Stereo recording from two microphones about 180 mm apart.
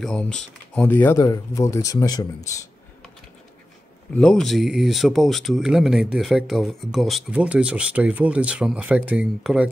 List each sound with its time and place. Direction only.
0.0 s speech: 5° left (ahead or behind)
4.1 s speech: 5° left (ahead or behind)